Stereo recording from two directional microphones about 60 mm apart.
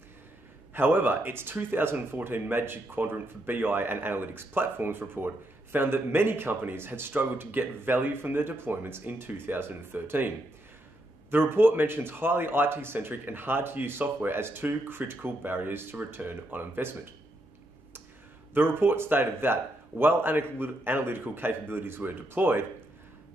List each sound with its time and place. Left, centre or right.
0.7 s speech: right
18.5 s speech: right